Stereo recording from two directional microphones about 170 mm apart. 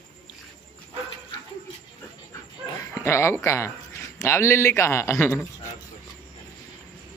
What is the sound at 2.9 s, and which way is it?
A man's voice, 15° left (ahead or behind).